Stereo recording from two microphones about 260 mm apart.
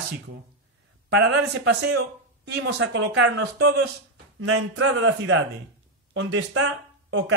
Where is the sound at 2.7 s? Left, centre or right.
Right.